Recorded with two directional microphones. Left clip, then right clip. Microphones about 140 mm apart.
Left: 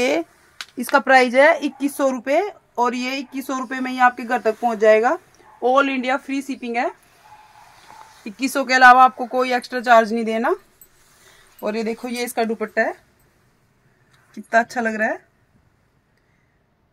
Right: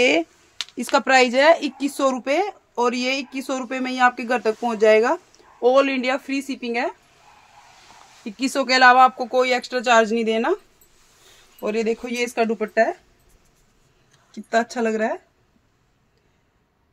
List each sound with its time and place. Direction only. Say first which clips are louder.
0.0 s speech: right 2 dB; 15° right (ahead or behind)
8.2 s speech: left 1 dB; 10° right (ahead or behind)
11.6 s speech: right 1 dB; 5° right (ahead or behind)
14.3 s speech: left 3 dB; 5° left (ahead or behind)